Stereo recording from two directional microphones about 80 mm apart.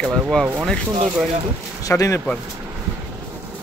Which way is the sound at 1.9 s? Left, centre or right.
Left.